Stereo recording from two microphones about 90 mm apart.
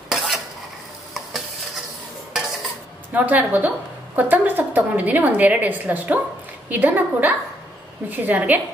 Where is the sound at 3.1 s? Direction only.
15° right (ahead or behind).